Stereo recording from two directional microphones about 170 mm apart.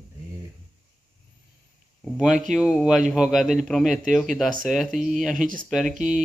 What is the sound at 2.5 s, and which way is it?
A man's voice, centre (ahead or behind).